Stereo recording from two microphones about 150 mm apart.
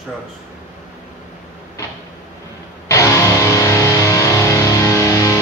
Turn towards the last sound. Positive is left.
turn(degrees=20)  # may be behind; listen again after turning